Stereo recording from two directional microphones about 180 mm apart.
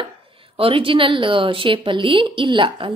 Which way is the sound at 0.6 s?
30° right (ahead or behind).